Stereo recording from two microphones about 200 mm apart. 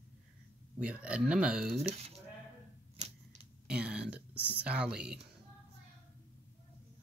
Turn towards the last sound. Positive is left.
turn(degrees=-5)  # may be behind; listen again after turning